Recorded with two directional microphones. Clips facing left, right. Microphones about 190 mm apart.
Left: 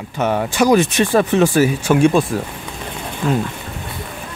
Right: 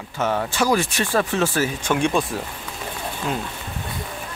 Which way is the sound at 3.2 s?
15° right (ahead or behind).